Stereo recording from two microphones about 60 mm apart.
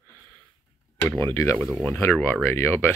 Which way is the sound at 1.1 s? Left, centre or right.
Left.